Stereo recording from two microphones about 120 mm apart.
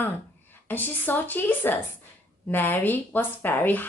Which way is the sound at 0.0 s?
15° left (ahead or behind).